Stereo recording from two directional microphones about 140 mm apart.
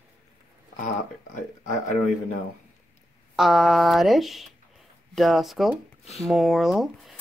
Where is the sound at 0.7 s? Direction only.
65° left (ahead or behind).